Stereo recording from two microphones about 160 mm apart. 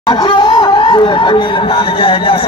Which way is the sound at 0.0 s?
30° left (ahead or behind).